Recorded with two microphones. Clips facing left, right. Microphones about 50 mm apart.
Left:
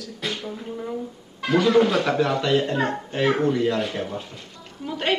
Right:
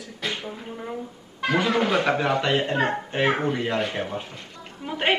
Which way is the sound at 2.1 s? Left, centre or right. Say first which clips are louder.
Left 1 dB; right.